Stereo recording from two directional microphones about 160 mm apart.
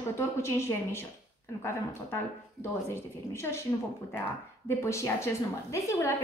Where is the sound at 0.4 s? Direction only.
15° left (ahead or behind).